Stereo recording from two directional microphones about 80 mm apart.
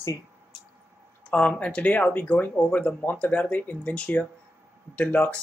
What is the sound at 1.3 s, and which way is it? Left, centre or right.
Speech, centre.